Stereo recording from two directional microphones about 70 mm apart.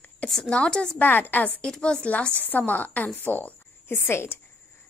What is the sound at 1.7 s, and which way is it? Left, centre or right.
A woman's voice, centre.